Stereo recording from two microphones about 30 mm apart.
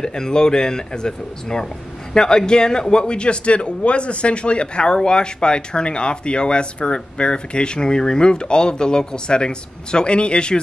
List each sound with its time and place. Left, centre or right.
0.0 s a man's voice: left